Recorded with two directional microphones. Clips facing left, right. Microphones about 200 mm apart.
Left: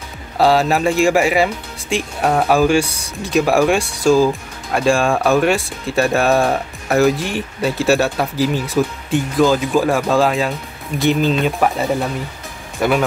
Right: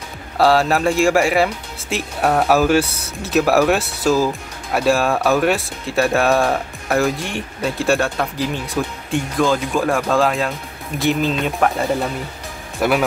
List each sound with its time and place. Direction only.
0.4 s speech: centre (ahead or behind)